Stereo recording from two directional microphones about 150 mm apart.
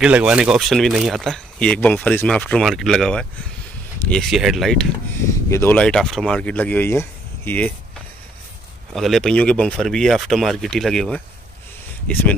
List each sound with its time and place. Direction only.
0.0 s speech: 5° right (ahead or behind)
5.1 s speech: 20° left (ahead or behind)
8.9 s speech: centre (ahead or behind)